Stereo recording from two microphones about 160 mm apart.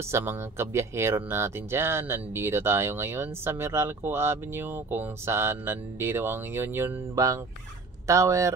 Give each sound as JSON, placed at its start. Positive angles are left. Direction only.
{"t": 0.0, "sound": "speech", "side_deg": -15}